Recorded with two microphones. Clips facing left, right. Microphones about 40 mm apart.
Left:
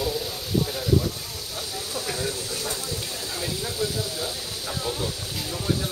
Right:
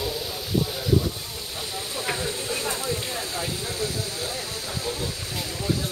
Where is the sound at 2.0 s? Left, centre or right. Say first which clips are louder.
Right 1 dB; right.